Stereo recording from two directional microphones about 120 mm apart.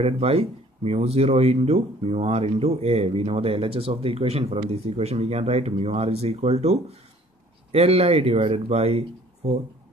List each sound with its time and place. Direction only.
0.0 s speech: 55° right (ahead or behind)